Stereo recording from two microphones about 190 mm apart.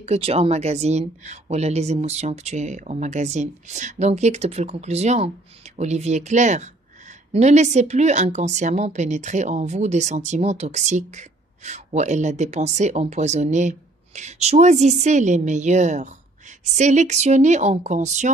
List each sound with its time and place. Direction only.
0.0 s speech: 35° right (ahead or behind)